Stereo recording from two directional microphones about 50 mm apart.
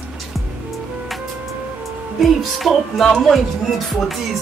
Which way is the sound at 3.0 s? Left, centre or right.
Centre.